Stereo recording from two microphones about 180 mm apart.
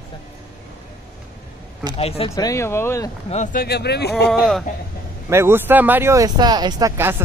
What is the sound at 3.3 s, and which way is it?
Speech, 45° left (ahead or behind).